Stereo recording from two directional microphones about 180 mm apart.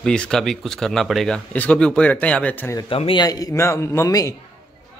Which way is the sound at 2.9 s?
30° left (ahead or behind).